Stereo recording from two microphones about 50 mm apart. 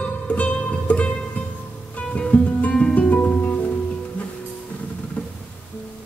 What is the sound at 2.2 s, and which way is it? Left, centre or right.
Music, left.